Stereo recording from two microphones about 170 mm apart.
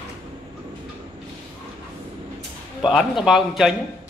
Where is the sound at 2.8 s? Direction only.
Centre (ahead or behind).